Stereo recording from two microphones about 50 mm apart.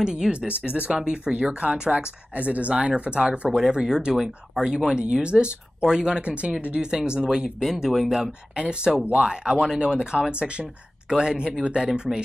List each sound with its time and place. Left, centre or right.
0.0 s speech: centre
0.5 s speech: right
3.4 s speech: centre
8.5 s speech: centre